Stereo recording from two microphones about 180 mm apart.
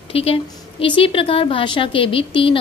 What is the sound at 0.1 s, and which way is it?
A woman's voice, 30° left (ahead or behind).